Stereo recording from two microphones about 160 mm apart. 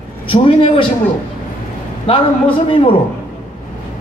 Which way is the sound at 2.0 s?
35° left (ahead or behind).